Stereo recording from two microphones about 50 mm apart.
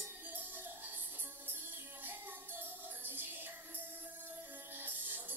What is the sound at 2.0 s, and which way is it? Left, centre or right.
Music, right.